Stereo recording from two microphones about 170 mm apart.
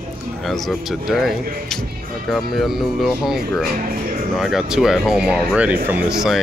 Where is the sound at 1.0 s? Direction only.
Centre (ahead or behind).